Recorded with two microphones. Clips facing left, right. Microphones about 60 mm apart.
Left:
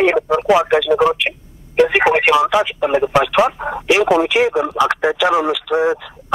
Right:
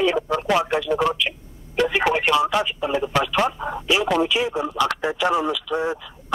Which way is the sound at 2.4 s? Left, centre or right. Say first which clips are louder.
Left 6 dB; left.